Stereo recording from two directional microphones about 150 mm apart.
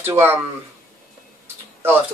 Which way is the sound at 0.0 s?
15° right (ahead or behind).